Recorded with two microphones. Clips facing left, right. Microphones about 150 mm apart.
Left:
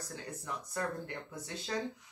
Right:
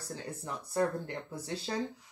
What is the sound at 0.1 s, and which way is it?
Speech, 30° right (ahead or behind).